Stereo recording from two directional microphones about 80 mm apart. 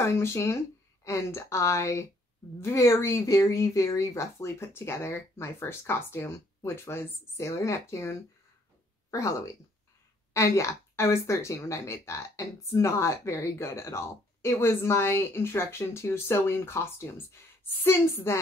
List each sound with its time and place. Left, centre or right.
0.0 s a woman's voice: left
10.3 s a woman's voice: left